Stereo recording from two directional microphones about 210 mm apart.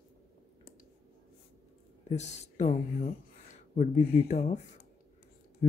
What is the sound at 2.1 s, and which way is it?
Speech, 30° left (ahead or behind).